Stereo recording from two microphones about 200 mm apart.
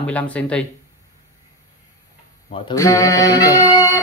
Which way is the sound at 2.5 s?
15° left (ahead or behind).